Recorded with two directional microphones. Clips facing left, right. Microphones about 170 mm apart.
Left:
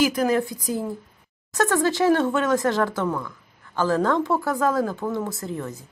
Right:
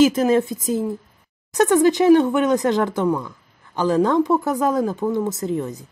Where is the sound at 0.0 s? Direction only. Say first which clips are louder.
Right 5 dB; 25° right (ahead or behind).